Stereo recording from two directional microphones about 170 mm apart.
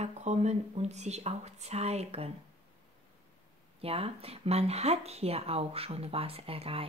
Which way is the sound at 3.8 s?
35° right (ahead or behind).